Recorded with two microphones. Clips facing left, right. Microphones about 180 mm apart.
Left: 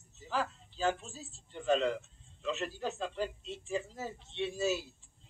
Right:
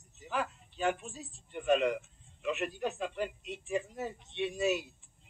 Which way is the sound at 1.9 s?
15° right (ahead or behind).